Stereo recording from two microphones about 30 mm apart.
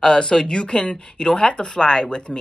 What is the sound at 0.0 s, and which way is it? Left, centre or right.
Speech, left.